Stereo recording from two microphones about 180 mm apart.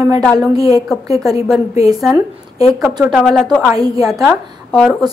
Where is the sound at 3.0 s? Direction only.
5° right (ahead or behind).